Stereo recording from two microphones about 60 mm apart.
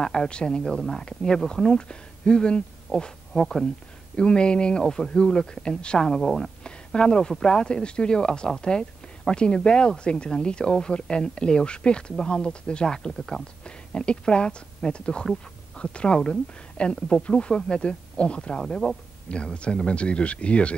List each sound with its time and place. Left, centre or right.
0.0 s speech: centre
3.3 s speech: centre
4.2 s speech: centre
6.0 s speech: centre
18.7 s speech: centre
19.2 s speech: centre